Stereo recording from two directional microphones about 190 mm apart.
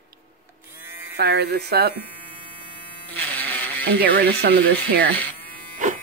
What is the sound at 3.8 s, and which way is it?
Speech, 55° right (ahead or behind).